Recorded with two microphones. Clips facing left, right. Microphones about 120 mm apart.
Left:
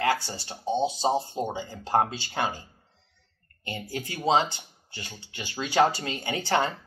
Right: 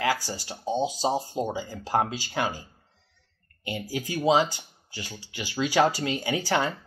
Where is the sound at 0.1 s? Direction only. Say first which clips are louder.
Left 1 dB; 25° left (ahead or behind).